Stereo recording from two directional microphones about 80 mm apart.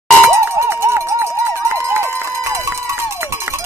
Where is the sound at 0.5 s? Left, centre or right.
Right.